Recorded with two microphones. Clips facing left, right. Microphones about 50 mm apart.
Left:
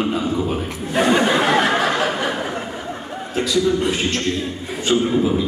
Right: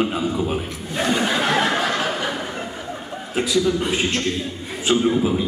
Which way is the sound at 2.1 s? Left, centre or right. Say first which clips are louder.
Left 3 dB; centre.